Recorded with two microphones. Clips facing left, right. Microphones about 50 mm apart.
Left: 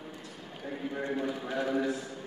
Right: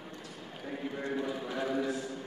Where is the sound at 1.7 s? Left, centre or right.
Left.